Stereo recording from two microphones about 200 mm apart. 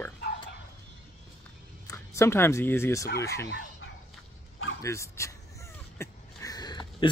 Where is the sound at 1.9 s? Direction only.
15° left (ahead or behind).